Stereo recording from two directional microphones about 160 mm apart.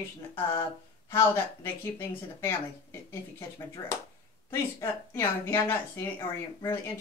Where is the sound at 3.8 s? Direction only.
15° left (ahead or behind).